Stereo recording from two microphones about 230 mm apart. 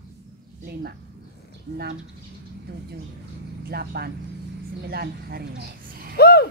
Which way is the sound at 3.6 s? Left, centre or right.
Right.